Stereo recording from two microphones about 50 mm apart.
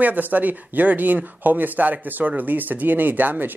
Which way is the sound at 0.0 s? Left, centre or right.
Right.